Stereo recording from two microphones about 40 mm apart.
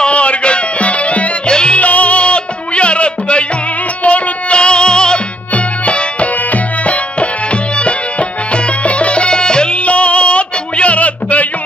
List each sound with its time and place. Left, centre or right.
0.0 s music: left
1.5 s music: left
1.8 s music: left
8.8 s music: left
9.8 s music: left